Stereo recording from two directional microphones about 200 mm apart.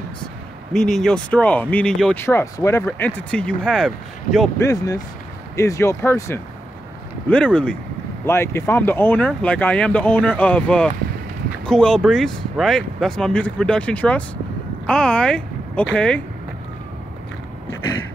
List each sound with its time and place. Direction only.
0.7 s speech: centre (ahead or behind)
4.6 s speech: 15° left (ahead or behind)